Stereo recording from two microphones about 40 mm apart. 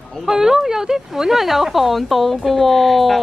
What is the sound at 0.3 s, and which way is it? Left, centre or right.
Speech, centre.